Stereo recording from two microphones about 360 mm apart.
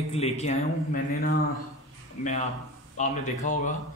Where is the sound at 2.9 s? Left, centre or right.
Centre.